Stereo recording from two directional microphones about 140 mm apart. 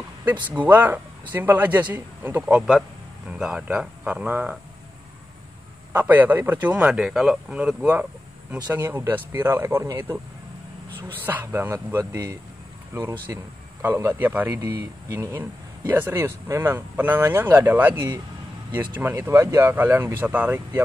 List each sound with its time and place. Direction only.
0.6 s speech: 10° right (ahead or behind)
2.4 s speech: 5° right (ahead or behind)
5.9 s speech: 15° right (ahead or behind)